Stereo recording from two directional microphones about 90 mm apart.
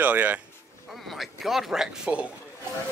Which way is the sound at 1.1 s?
Centre (ahead or behind).